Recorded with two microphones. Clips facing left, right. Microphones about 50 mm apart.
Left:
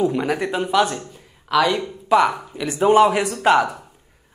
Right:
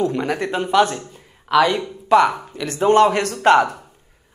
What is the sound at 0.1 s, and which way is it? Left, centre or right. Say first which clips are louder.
A woman's voice: even; centre.